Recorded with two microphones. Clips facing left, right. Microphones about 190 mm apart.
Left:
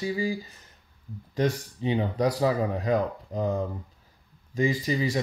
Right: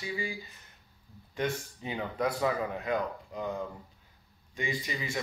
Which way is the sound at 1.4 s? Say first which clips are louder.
Left 6 dB; 35° left (ahead or behind).